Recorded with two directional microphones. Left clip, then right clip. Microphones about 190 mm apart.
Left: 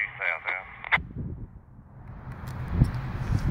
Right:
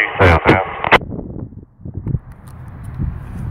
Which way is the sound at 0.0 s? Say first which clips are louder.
Right 17 dB; 45° right (ahead or behind).